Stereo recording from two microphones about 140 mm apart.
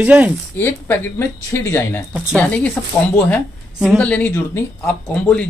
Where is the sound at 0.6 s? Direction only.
15° left (ahead or behind).